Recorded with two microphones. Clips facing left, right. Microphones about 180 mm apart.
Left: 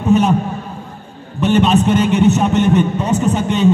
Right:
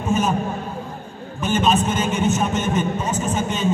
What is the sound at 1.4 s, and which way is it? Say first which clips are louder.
A man's voice: left 6 dB; 70° left (ahead or behind).